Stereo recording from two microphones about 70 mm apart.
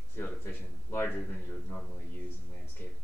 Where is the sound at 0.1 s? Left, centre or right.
Left.